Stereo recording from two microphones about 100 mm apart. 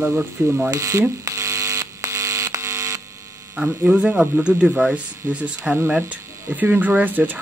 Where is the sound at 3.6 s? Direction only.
25° right (ahead or behind).